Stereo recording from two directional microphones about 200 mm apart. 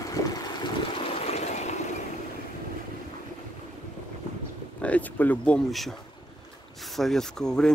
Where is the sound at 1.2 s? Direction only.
35° left (ahead or behind).